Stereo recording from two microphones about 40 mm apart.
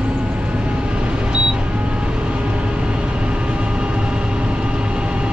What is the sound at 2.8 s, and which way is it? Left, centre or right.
Vehicle, right.